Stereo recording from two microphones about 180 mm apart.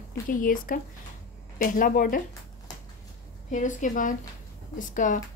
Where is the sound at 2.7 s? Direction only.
20° left (ahead or behind).